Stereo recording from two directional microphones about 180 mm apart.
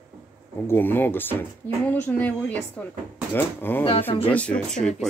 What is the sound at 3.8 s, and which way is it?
Speech, 30° left (ahead or behind).